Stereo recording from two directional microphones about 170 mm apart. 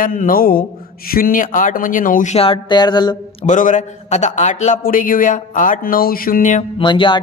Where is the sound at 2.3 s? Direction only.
30° left (ahead or behind).